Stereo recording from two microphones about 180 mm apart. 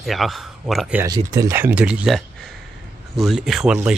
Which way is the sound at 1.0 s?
20° right (ahead or behind).